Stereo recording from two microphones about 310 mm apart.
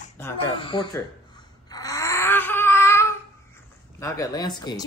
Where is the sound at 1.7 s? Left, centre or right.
Centre.